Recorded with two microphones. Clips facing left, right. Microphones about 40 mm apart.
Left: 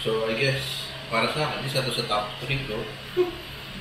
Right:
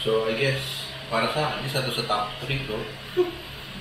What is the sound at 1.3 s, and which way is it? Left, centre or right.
Speech, centre.